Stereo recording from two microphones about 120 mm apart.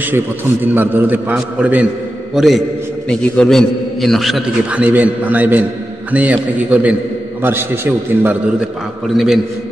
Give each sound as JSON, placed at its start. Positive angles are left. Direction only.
{"t": 0.7, "sound": "a man's voice", "side_deg": -15}
{"t": 2.3, "sound": "a man's voice", "side_deg": 0}
{"t": 4.6, "sound": "a man's voice", "side_deg": -10}
{"t": 9.0, "sound": "a man's voice", "side_deg": 0}